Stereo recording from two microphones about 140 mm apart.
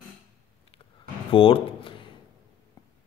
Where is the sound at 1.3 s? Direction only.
40° left (ahead or behind).